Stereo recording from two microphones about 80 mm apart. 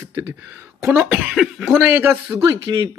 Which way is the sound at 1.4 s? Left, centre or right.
Centre.